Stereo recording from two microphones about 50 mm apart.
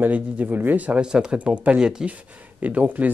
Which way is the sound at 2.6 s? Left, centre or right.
Right.